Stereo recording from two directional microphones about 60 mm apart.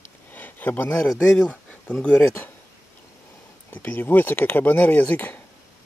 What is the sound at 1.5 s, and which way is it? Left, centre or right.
Speech, left.